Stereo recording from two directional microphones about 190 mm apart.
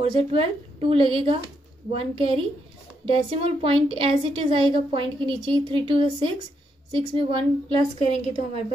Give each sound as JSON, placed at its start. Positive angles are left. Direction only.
{"t": 0.0, "sound": "a woman's voice", "side_deg": -30}